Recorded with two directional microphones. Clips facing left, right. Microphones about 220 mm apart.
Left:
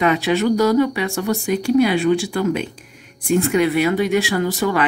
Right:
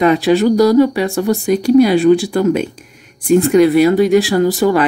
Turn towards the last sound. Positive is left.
turn(degrees=-35)  # may be behind; listen again after turning